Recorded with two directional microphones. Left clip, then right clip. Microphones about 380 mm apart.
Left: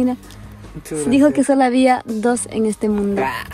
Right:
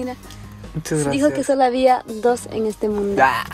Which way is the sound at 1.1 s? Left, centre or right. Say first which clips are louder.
Left 5 dB; centre.